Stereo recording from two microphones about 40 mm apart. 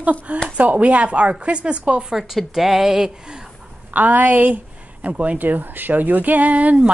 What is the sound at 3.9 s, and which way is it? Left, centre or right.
Speech, right.